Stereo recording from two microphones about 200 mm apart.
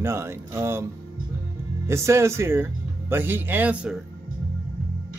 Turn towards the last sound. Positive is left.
turn(degrees=-5)  # may be behind; listen again after turning